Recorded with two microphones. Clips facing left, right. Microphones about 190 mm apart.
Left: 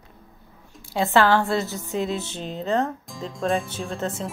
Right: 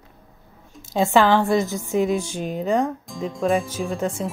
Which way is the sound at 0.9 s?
15° right (ahead or behind).